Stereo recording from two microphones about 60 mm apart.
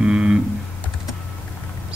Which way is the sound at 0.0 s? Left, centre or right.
Centre.